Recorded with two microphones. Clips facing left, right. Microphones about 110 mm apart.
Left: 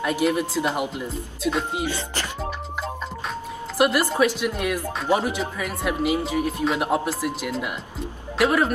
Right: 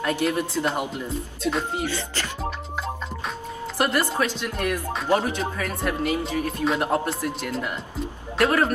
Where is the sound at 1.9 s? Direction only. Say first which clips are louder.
Left 1 dB; 20° left (ahead or behind).